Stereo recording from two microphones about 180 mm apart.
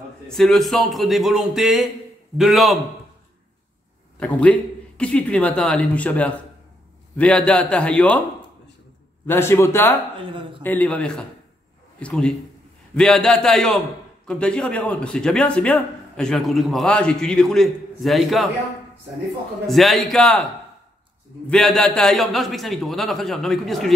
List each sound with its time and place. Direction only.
0.3 s a man's voice: centre (ahead or behind)
4.2 s speech: 5° left (ahead or behind)
9.2 s a man's voice: 15° left (ahead or behind)
19.6 s a man's voice: centre (ahead or behind)
21.5 s a man's voice: 5° left (ahead or behind)